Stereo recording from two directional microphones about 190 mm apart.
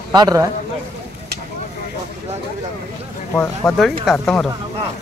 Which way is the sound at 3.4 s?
5° left (ahead or behind).